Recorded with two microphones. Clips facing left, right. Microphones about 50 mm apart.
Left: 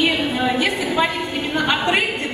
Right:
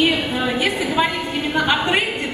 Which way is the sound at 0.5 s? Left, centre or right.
Centre.